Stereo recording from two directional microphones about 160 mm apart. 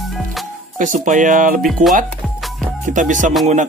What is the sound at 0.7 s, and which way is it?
Speech, 55° right (ahead or behind).